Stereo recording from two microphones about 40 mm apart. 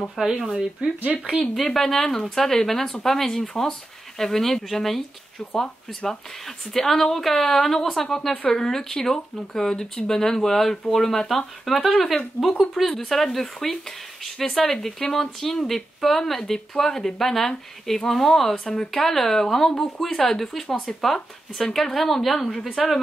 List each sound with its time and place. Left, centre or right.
0.2 s speech: centre
0.8 s speech: right
1.4 s speech: centre